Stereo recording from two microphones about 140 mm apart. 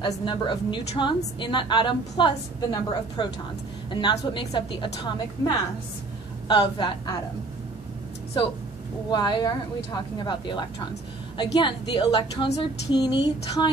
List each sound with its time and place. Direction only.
0.0 s a woman's voice: 35° left (ahead or behind)
9.1 s a woman's voice: 30° left (ahead or behind)